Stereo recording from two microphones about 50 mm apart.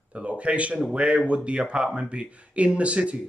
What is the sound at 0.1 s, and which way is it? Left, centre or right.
Speech, right.